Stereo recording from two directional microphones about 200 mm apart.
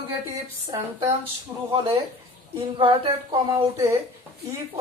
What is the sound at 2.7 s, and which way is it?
Speech, 25° right (ahead or behind).